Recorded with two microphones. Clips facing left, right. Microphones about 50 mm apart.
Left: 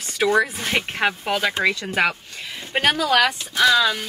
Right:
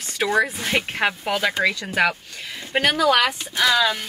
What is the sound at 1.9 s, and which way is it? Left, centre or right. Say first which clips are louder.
Speech: right 1 dB; left.